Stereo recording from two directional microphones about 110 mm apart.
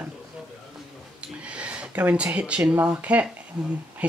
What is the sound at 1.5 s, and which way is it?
Speech, 10° right (ahead or behind).